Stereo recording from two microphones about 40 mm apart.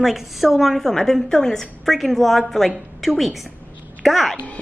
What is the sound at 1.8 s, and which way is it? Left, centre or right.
A woman's voice, centre.